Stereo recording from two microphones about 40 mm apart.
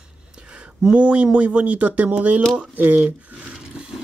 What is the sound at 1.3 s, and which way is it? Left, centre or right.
Speech, right.